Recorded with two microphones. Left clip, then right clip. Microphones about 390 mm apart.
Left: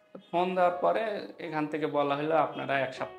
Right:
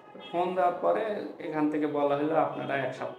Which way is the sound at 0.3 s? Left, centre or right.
Left.